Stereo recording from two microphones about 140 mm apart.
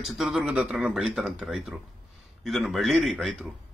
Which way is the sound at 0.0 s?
Centre (ahead or behind).